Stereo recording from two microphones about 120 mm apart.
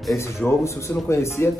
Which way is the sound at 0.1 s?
25° left (ahead or behind).